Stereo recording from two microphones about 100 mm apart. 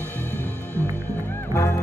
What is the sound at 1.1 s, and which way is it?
Music, 20° left (ahead or behind).